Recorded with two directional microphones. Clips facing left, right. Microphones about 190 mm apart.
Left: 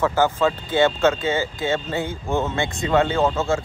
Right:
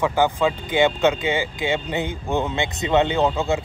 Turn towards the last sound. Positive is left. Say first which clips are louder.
# even
turn(degrees=-15)  # may be behind; listen again after turning